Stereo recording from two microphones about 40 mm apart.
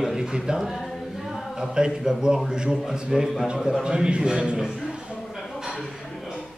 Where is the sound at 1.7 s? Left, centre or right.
Centre.